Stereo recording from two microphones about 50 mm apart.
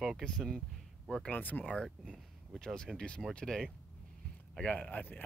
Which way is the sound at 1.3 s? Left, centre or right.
Left.